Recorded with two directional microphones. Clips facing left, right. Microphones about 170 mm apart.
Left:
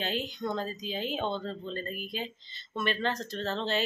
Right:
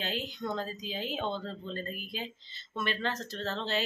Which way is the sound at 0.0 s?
5° right (ahead or behind).